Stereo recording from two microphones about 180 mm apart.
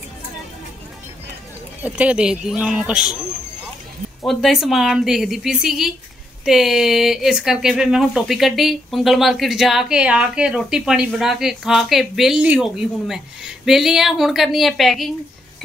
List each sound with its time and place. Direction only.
1.8 s speech: 10° right (ahead or behind)
4.3 s speech: centre (ahead or behind)